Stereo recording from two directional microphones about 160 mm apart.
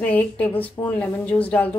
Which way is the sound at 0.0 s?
10° left (ahead or behind).